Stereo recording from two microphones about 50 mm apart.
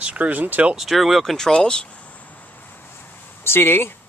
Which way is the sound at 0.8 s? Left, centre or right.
Centre.